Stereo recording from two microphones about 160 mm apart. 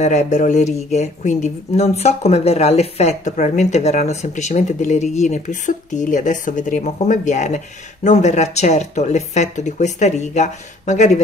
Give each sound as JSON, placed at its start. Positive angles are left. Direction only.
{"t": 0.0, "sound": "speech", "side_deg": 50}